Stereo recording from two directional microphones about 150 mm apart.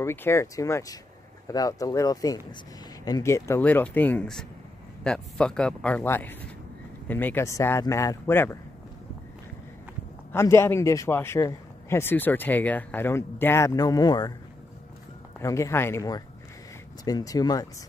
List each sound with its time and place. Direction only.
0.0 s a man's voice: 15° left (ahead or behind)
10.3 s a man's voice: 20° left (ahead or behind)
15.4 s speech: 20° left (ahead or behind)